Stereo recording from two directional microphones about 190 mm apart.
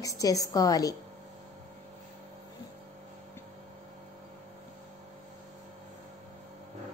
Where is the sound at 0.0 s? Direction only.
20° left (ahead or behind).